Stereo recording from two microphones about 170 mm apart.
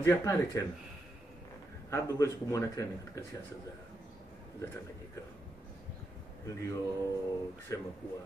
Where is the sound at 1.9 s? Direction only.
15° left (ahead or behind).